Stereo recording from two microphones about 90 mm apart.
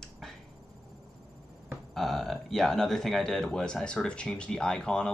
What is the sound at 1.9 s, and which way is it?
Speech, centre (ahead or behind).